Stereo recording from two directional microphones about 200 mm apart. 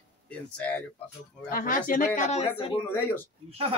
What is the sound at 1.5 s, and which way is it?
Speech, 45° left (ahead or behind).